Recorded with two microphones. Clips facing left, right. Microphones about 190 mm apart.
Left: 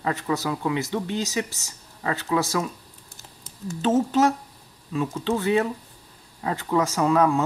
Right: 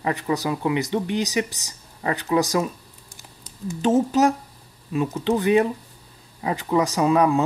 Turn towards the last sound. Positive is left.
turn(degrees=-15)  # may be behind; listen again after turning